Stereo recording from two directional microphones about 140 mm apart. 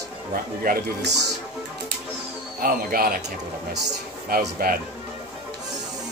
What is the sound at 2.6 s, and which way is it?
Speech, 90° right.